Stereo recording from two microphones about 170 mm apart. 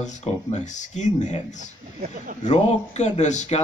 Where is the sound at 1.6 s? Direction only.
55° right (ahead or behind).